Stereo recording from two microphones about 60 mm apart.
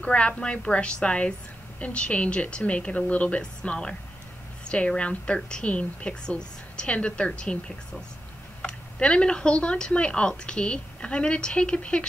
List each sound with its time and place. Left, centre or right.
0.0 s a woman's voice: centre